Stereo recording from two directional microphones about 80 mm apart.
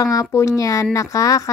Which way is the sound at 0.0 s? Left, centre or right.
Left.